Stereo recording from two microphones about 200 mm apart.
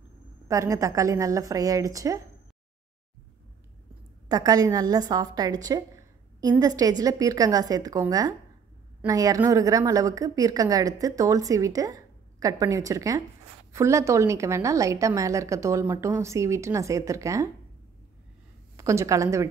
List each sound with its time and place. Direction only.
0.5 s a woman's voice: 15° right (ahead or behind)
4.3 s a woman's voice: 20° right (ahead or behind)
18.8 s a woman's voice: 15° right (ahead or behind)